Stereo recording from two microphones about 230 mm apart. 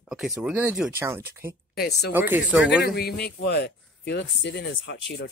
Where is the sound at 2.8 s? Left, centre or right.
Left.